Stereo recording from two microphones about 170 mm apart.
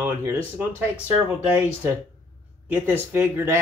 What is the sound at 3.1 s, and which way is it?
Speech, 15° right (ahead or behind).